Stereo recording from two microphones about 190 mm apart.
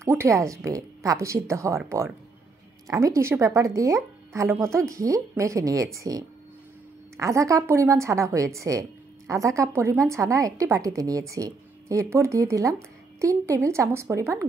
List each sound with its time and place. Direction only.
0.0 s a woman's voice: 15° right (ahead or behind)